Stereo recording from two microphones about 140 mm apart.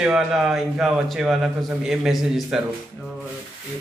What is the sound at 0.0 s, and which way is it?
A man's voice, 5° right (ahead or behind).